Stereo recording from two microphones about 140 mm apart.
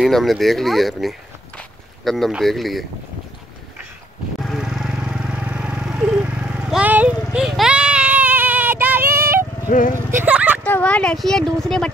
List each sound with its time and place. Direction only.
0.0 s speech: centre (ahead or behind)
4.4 s vehicle: centre (ahead or behind); by 9.3 s 15° right (ahead or behind)
9.7 s speech: 70° left (ahead or behind)
10.1 s a sound: 10° right (ahead or behind)
10.6 s speech: 10° left (ahead or behind)